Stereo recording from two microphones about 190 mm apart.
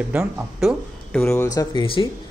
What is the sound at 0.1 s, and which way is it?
Speech, 5° right (ahead or behind).